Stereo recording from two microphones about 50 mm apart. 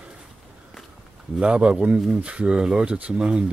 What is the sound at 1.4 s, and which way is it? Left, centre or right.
Speech, right.